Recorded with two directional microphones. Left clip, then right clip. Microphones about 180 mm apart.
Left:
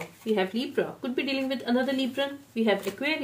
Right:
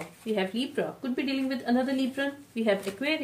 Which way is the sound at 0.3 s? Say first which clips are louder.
Left 2 dB; 35° left (ahead or behind).